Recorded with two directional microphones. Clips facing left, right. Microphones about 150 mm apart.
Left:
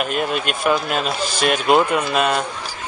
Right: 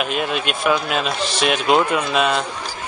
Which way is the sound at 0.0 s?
Centre (ahead or behind).